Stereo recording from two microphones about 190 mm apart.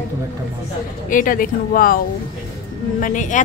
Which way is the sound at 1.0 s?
45° left (ahead or behind).